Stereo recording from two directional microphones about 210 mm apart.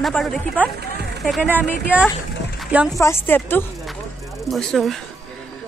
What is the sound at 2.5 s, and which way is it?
Music, centre (ahead or behind).